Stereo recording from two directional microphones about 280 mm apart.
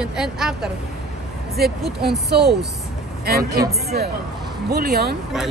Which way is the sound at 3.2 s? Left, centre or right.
Right.